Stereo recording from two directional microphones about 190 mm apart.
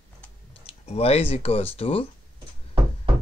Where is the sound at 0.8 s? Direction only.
35° left (ahead or behind).